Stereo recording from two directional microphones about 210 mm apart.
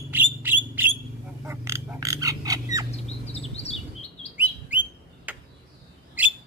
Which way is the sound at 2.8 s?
30° left (ahead or behind).